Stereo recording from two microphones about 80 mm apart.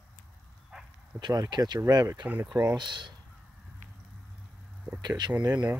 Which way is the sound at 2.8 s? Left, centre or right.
Right.